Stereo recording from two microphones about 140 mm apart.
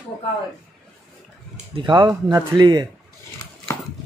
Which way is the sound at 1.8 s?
35° right (ahead or behind).